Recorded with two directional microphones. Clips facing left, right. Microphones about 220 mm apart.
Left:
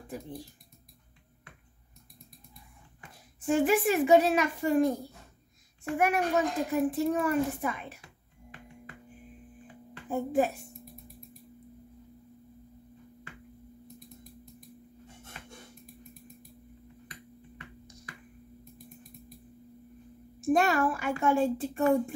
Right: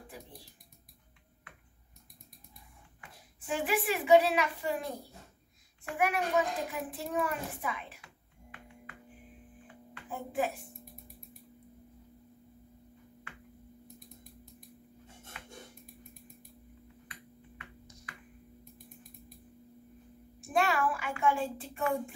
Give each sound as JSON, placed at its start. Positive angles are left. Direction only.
{"t": 3.0, "sound": "a woman's voice", "side_deg": 45}
{"t": 5.9, "sound": "a woman's voice", "side_deg": 45}
{"t": 10.0, "sound": "speech", "side_deg": 45}
{"t": 20.3, "sound": "a woman's voice", "side_deg": 40}